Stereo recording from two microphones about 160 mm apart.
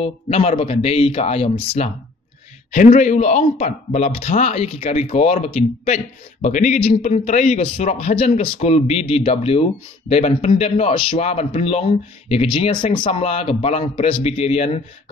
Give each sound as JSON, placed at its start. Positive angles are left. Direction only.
{"t": 0.0, "sound": "a man's voice", "side_deg": 40}
{"t": 2.9, "sound": "a man's voice", "side_deg": 45}